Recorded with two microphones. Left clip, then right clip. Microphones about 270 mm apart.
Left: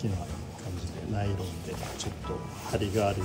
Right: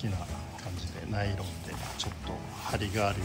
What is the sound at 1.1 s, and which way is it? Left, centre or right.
Speech, centre.